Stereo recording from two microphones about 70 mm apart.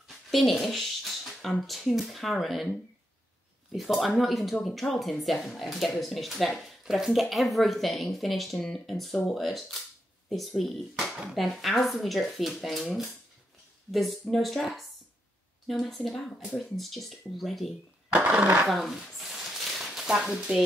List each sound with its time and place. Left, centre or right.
0.3 s speech: centre
3.7 s speech: centre
18.1 s speech: right
18.7 s a sound: centre